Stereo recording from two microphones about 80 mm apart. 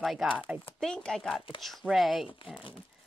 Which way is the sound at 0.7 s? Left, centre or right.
Centre.